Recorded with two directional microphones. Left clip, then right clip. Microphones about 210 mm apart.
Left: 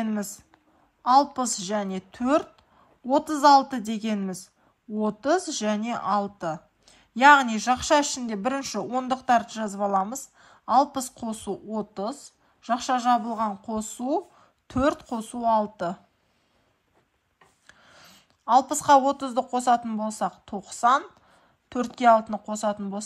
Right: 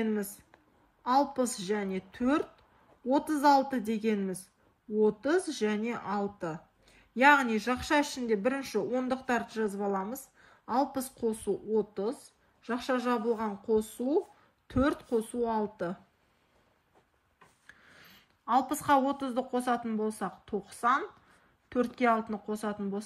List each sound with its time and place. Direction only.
0.0 s speech: 25° left (ahead or behind)
17.6 s a woman's voice: 20° left (ahead or behind)